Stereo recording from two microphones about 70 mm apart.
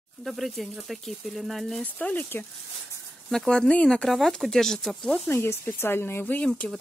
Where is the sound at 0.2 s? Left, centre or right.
Centre.